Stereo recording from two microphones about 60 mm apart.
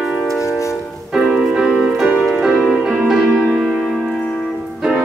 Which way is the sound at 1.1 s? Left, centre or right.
Centre.